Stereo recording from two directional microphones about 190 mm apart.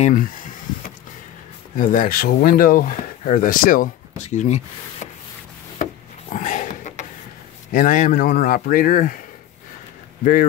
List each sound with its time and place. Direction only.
0.0 s speech: 45° left (ahead or behind)
1.8 s speech: 45° left (ahead or behind)
6.3 s dog: 40° left (ahead or behind)
7.7 s speech: 45° left (ahead or behind)